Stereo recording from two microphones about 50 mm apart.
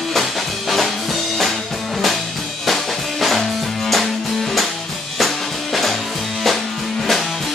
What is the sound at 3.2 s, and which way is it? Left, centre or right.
Music, centre.